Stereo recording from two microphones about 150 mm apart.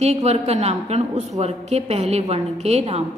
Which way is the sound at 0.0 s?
45° right (ahead or behind).